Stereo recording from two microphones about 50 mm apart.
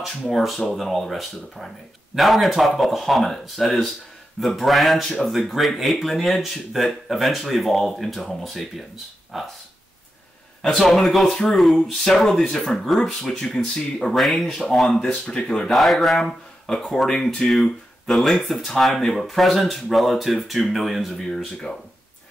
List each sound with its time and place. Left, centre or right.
0.3 s speech: centre
10.7 s speech: centre
14.1 s speech: centre
15.0 s speech: left
15.7 s speech: centre
16.7 s speech: centre